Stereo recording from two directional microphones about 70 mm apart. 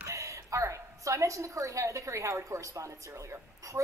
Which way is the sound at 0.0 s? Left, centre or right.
Right.